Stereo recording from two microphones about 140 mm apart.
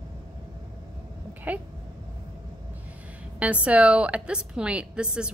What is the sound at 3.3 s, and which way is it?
A woman's voice, 10° right (ahead or behind).